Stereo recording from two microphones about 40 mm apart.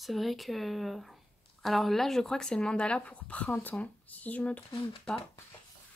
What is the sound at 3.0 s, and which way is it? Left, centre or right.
Speech, left.